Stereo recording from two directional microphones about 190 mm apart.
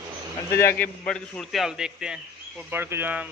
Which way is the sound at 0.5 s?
15° left (ahead or behind).